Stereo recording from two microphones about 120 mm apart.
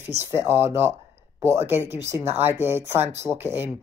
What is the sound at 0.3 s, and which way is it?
Speech, 20° right (ahead or behind).